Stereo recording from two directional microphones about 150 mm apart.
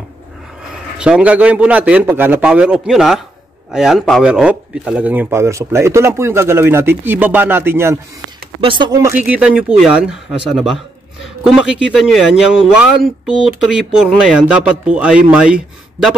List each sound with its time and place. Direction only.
0.9 s speech: 5° right (ahead or behind)
8.5 s speech: 35° right (ahead or behind)
9.0 s speech: 10° right (ahead or behind)